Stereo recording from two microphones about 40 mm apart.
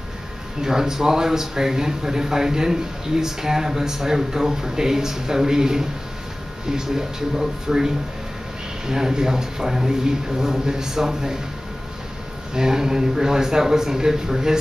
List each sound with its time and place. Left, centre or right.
0.6 s speech: centre
12.5 s speech: centre